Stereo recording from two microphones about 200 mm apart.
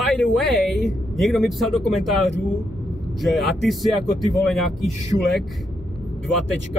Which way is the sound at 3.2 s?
Centre (ahead or behind).